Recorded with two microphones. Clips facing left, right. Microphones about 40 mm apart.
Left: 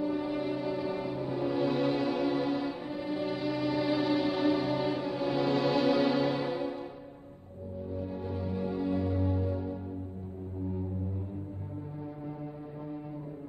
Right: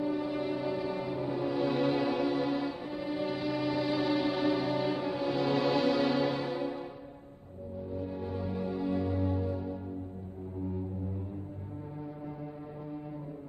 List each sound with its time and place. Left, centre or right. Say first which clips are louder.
0.0 s music: left 1 dB; centre
7.9 s music: even; centre